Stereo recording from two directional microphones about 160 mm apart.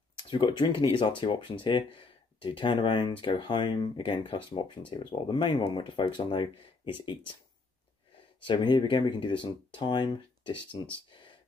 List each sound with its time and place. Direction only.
0.3 s speech: 30° left (ahead or behind)
8.5 s speech: 30° left (ahead or behind)